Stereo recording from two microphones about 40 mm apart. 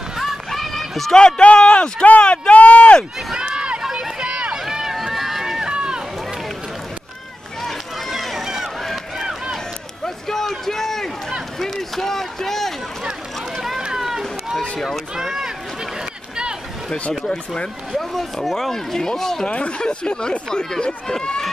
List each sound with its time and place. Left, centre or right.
0.5 s a sound: centre
1.1 s speech: left
2.0 s speech: left
3.3 s run: right
4.6 s run: centre
8.1 s run: centre
10.0 s run: centre
13.7 s run: centre
15.1 s speech: centre
17.9 s speech: centre
19.4 s speech: left; by 21.5 s centre